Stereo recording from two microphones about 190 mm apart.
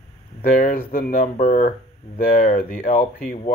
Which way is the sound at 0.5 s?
45° left (ahead or behind).